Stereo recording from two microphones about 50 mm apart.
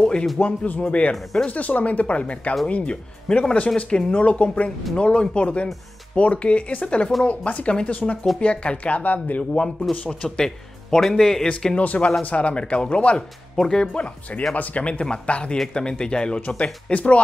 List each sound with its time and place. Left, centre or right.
0.0 s speech: centre
9.9 s a man's voice: centre
10.2 s a man's voice: centre
11.8 s speech: left
13.6 s a man's voice: centre
13.9 s speech: left